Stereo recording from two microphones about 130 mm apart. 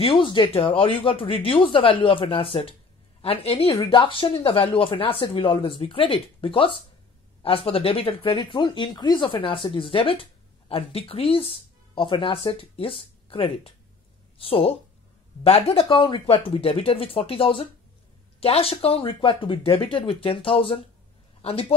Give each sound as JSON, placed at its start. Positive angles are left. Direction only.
{"t": 0.0, "sound": "speech", "side_deg": 40}